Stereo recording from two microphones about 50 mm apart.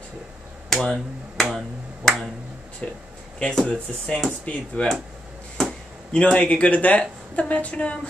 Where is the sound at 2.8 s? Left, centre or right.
Left.